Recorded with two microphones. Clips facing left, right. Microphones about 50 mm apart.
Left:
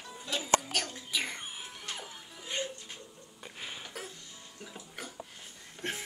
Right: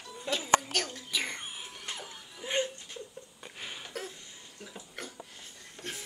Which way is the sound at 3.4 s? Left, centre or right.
Centre.